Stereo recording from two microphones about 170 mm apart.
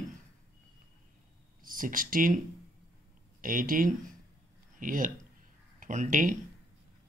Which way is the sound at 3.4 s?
55° right (ahead or behind).